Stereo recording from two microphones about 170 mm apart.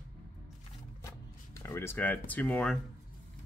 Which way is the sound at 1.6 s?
15° left (ahead or behind).